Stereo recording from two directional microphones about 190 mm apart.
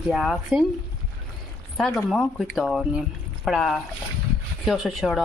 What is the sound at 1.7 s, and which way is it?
Speech, 5° left (ahead or behind).